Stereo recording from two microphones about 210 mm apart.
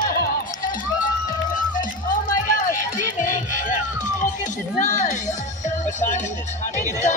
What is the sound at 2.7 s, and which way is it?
Run, 40° left (ahead or behind).